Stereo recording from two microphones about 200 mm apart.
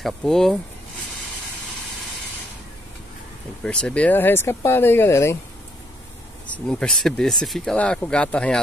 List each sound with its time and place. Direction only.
0.0 s speech: 5° left (ahead or behind)
3.6 s speech: 5° left (ahead or behind)
6.5 s speech: 5° left (ahead or behind)